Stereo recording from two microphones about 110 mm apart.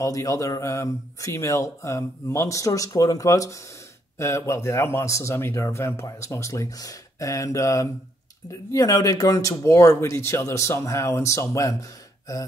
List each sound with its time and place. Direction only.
0.0 s speech: 30° left (ahead or behind)